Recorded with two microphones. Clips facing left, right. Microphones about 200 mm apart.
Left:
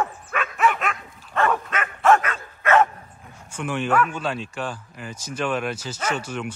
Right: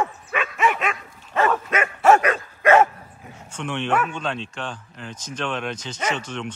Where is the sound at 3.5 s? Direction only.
5° left (ahead or behind).